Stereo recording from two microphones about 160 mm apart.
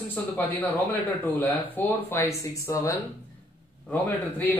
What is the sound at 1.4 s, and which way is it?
A man's voice, 10° left (ahead or behind).